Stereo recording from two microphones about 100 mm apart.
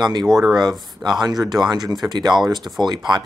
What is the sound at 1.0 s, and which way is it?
Speech, 45° right (ahead or behind).